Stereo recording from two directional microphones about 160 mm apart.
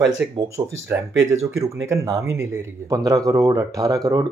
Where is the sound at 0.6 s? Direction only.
25° right (ahead or behind).